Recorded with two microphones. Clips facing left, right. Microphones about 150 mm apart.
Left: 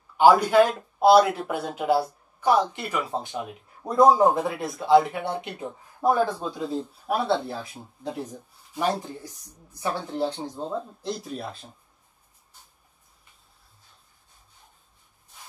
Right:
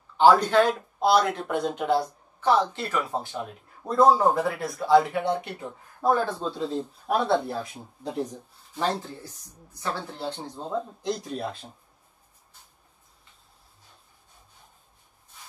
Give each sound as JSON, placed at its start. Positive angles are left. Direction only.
{"t": 0.2, "sound": "speech", "side_deg": 10}